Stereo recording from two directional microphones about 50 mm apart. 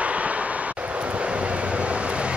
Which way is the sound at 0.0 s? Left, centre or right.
Right.